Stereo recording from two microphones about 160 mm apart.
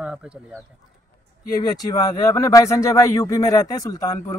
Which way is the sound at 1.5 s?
25° left (ahead or behind).